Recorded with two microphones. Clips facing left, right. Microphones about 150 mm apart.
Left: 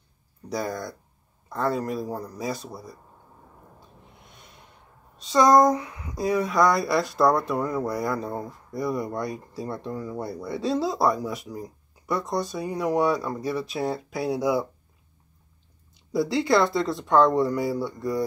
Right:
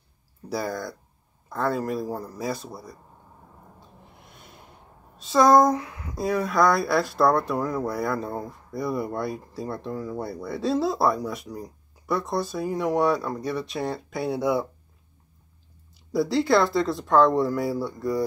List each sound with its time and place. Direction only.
0.5 s speech: centre (ahead or behind)
3.8 s owl: centre (ahead or behind)
5.1 s speech: centre (ahead or behind)
16.1 s speech: centre (ahead or behind)